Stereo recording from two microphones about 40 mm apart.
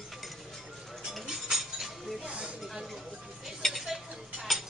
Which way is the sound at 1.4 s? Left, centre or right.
Centre.